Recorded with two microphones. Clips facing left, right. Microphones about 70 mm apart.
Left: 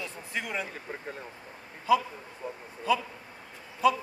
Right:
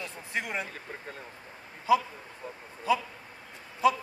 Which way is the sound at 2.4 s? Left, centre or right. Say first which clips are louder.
Left 4 dB; centre.